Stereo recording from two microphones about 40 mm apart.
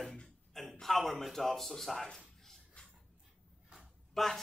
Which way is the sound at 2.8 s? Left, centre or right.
Left.